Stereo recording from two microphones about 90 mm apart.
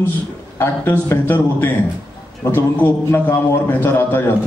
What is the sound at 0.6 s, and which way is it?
A man's voice, 25° left (ahead or behind).